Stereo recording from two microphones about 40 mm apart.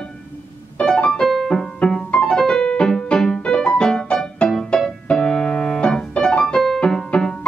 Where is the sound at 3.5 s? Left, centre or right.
Centre.